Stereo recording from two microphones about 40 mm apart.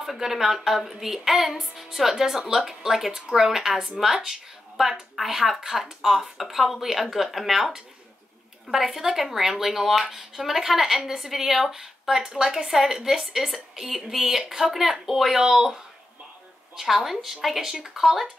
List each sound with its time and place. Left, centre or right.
0.0 s speech: centre
12.2 s a woman's voice: right
12.6 s speech: centre
16.7 s speech: centre